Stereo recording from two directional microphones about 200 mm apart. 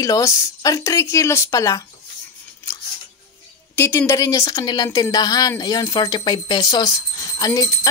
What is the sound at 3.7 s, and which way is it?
A woman's voice, 15° left (ahead or behind).